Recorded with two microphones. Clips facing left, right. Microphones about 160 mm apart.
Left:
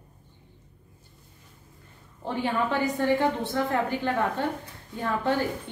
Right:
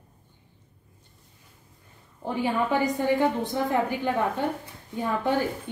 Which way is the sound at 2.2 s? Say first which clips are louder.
Right 1 dB; 10° right (ahead or behind).